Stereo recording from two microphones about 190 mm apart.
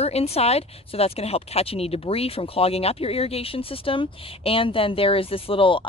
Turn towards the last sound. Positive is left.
turn(degrees=30)  # may be behind; listen again after turning